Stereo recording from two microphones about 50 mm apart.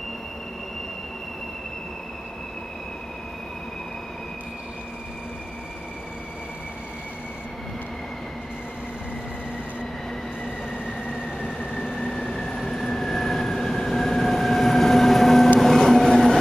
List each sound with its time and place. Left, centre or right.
10.9 s vehicle: centre
12.3 s vehicle: centre
12.6 s train: centre